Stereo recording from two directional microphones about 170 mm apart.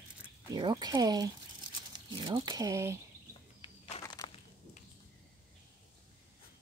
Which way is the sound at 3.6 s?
25° left (ahead or behind).